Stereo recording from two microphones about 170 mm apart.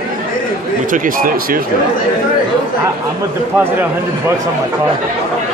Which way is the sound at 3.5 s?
10° right (ahead or behind).